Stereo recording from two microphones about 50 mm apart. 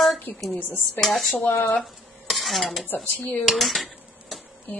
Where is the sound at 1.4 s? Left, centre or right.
Left.